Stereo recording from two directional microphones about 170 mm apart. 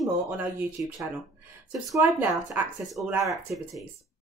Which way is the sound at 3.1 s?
20° right (ahead or behind).